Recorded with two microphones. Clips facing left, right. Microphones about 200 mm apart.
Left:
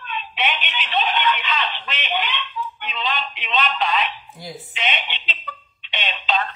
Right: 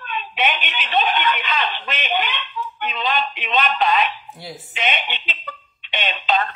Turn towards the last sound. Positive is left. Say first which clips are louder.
# right 3 dB
turn(degrees=-50)  # may be behind; listen again after turning